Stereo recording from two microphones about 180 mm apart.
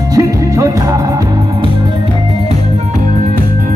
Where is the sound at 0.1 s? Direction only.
15° right (ahead or behind).